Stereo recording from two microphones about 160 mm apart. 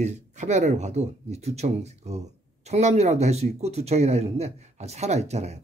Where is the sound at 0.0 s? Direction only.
45° right (ahead or behind).